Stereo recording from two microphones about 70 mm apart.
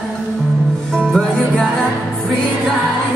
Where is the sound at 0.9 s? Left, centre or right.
Centre.